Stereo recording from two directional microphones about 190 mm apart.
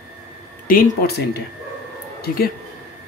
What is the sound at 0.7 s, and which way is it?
Speech, 50° left (ahead or behind).